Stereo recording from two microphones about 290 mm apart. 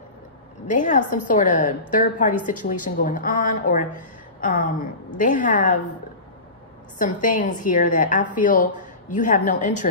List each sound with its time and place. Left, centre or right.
0.7 s a woman's voice: left
7.0 s a woman's voice: left